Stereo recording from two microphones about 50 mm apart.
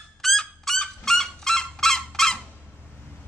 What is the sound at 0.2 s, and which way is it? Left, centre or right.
Fowl, centre.